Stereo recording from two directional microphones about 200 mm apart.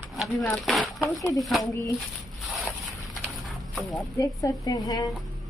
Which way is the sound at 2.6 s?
Centre (ahead or behind).